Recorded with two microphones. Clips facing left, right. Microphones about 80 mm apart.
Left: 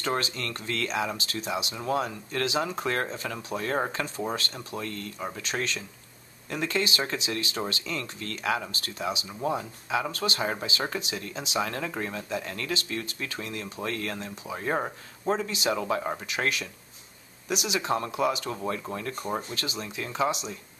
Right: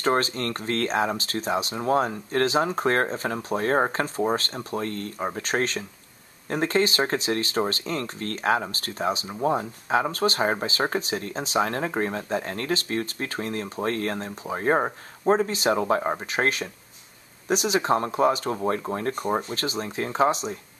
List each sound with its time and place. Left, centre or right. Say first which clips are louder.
0.0 s speech: right 6 dB; right